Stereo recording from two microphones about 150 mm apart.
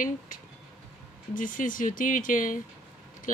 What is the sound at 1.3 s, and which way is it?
Speech, 65° left (ahead or behind).